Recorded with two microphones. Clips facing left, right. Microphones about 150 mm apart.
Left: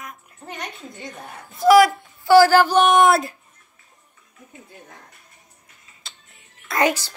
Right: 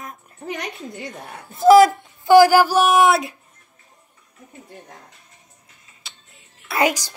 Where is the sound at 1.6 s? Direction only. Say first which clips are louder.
Right 2 dB; 25° right (ahead or behind); by 3.4 s centre (ahead or behind).